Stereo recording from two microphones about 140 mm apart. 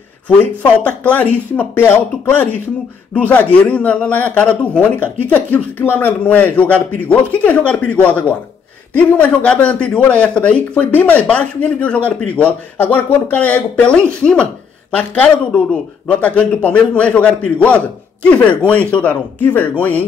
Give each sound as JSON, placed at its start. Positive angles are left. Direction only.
{"t": 0.4, "sound": "speech", "side_deg": 10}